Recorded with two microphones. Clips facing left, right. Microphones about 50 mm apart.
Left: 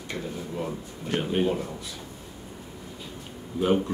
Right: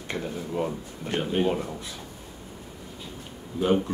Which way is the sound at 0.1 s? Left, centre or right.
Right.